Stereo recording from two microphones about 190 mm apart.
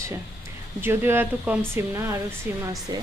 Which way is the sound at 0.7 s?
10° right (ahead or behind).